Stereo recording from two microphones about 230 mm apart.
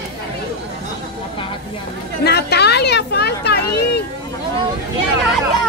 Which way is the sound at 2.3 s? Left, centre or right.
Left.